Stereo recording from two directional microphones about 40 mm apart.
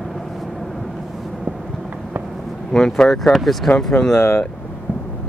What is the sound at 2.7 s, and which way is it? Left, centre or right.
Speech, centre.